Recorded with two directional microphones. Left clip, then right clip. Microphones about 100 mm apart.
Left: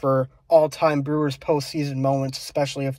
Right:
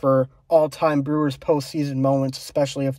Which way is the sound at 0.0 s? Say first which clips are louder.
Right 3 dB; 30° right (ahead or behind).